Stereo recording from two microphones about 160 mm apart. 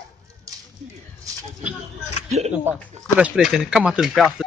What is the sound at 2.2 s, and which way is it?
Speech, 40° right (ahead or behind).